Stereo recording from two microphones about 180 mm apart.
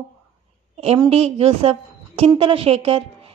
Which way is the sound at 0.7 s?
30° right (ahead or behind).